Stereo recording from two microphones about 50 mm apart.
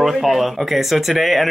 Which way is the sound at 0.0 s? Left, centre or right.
Centre.